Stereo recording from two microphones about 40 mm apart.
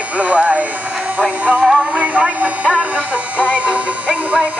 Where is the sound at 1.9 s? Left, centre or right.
Right.